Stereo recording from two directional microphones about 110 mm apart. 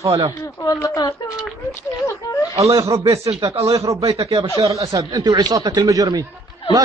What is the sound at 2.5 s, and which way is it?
Speech, 30° right (ahead or behind).